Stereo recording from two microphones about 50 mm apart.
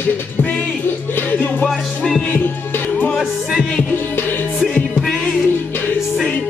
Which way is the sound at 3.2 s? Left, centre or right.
Centre.